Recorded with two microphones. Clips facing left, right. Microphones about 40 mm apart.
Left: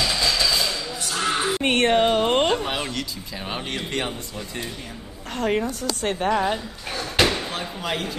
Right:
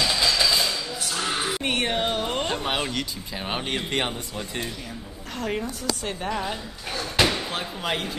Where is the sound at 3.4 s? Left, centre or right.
Right.